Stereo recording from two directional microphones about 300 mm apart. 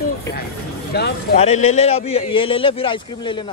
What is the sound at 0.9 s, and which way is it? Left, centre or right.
Speech, left.